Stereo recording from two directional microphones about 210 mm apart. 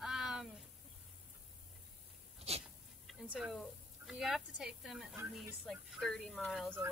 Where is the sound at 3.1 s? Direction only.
Centre (ahead or behind).